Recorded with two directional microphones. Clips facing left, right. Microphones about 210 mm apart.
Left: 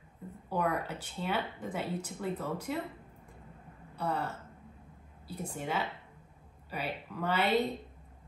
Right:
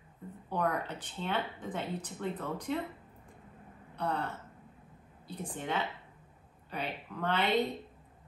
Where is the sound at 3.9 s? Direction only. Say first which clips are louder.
Even; 5° left (ahead or behind).